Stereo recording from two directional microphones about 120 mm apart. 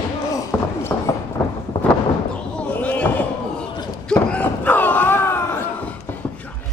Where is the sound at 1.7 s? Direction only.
35° left (ahead or behind).